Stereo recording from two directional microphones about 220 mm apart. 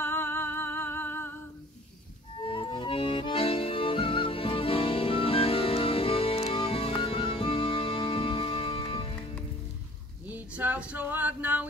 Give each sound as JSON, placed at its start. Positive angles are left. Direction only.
{"t": 0.0, "sound": "music", "side_deg": 10}
{"t": 2.4, "sound": "music", "side_deg": 25}
{"t": 10.2, "sound": "a sound", "side_deg": -5}